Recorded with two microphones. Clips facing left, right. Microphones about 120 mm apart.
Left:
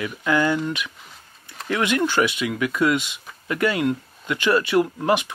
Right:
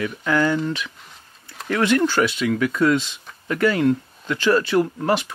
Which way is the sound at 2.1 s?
15° left (ahead or behind).